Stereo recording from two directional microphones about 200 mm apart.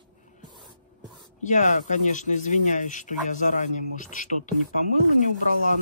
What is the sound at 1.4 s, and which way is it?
Speech, 40° left (ahead or behind).